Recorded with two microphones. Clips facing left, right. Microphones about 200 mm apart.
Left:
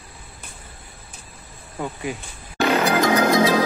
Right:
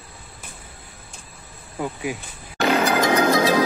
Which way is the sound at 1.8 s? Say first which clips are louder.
Right 1 dB; 10° right (ahead or behind).